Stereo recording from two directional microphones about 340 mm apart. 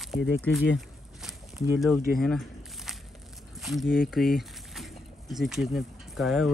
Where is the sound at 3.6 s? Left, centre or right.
Centre.